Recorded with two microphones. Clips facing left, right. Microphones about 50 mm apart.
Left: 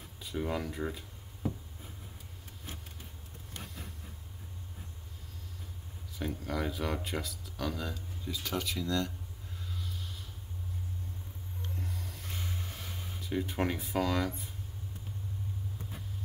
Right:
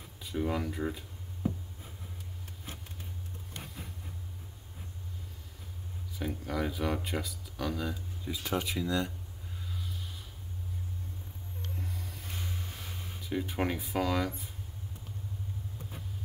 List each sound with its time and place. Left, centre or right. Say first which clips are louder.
0.2 s speech: right 2 dB; centre
6.1 s speech: right 1 dB; centre
8.3 s speech: right 2 dB; centre
11.7 s a sound: even; centre
13.2 s speech: even; centre